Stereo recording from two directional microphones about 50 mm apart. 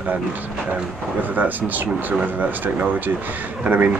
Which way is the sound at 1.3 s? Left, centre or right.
Right.